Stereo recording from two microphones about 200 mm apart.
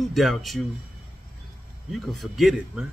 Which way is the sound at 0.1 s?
Centre (ahead or behind).